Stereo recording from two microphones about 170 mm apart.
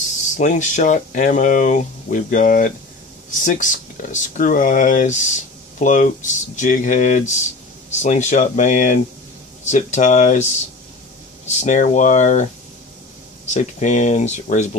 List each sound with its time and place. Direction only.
0.4 s speech: 45° left (ahead or behind)
13.5 s speech: 45° left (ahead or behind)